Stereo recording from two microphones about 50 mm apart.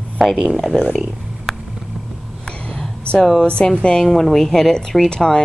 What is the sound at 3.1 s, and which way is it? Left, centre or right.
Speech, centre.